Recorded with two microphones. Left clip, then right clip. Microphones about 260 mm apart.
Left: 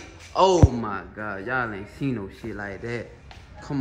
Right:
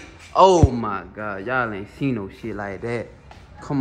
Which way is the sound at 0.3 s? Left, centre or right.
Centre.